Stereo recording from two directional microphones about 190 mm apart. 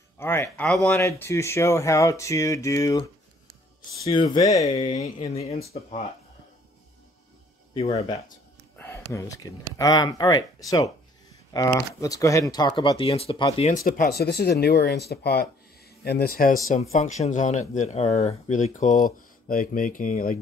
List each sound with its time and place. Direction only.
0.2 s speech: 10° left (ahead or behind)
0.9 s speech: 15° left (ahead or behind)
5.2 s speech: 35° left (ahead or behind)
7.7 s speech: 30° left (ahead or behind)
8.7 s speech: 10° left (ahead or behind)
11.5 s speech: 15° left (ahead or behind)
13.7 s speech: 45° left (ahead or behind)
16.9 s speech: 40° left (ahead or behind)